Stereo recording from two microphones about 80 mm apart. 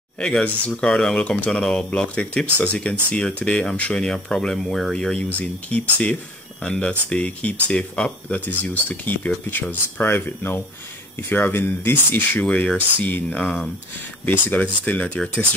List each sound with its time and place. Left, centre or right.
0.2 s speech: centre